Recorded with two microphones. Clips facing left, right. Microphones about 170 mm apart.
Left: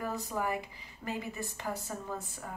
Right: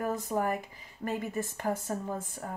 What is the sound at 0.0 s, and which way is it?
Speech, 50° right (ahead or behind).